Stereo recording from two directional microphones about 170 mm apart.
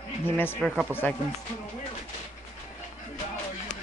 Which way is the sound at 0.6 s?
Centre (ahead or behind).